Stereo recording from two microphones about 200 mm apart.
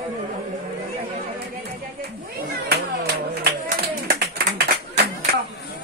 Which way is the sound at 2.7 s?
50° right (ahead or behind).